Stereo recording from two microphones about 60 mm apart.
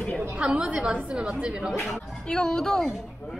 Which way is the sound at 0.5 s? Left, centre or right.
Centre.